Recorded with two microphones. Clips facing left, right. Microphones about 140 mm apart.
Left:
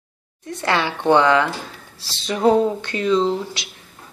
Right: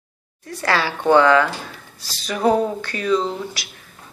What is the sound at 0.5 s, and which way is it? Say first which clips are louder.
A woman's voice: even; 20° left (ahead or behind).